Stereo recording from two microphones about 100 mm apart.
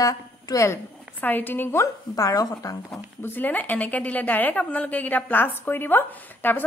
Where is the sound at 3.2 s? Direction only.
20° left (ahead or behind).